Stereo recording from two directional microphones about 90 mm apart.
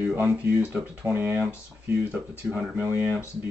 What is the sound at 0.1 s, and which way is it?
Speech, 20° right (ahead or behind).